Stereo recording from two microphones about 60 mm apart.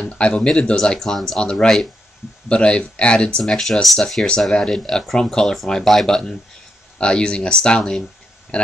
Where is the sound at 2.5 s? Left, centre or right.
Centre.